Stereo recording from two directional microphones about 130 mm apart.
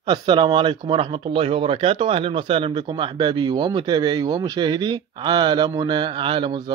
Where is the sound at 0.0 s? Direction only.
35° right (ahead or behind).